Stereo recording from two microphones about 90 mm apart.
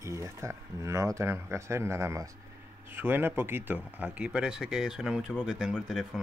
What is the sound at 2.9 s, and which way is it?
Speech, 25° right (ahead or behind).